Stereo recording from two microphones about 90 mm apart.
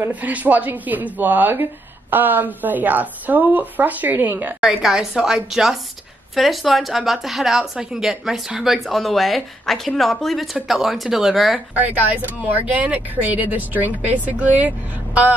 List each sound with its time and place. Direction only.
0.0 s a woman's voice: 15° right (ahead or behind)
4.6 s a woman's voice: 5° right (ahead or behind)
12.2 s a woman's voice: 20° right (ahead or behind)